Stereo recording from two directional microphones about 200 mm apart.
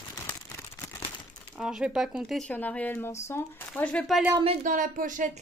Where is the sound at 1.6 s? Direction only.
5° right (ahead or behind).